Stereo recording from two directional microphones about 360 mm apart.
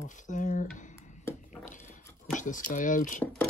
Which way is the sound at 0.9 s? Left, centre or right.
Centre.